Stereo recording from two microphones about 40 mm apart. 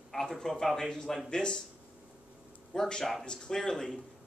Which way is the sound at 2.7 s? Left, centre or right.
Centre.